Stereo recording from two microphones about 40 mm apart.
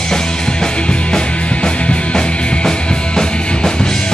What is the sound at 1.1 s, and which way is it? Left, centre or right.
Music, left.